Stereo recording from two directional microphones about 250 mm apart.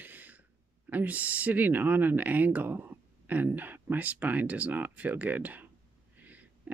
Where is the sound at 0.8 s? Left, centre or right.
Centre.